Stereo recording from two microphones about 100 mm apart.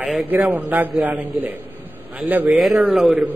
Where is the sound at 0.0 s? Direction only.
5° right (ahead or behind).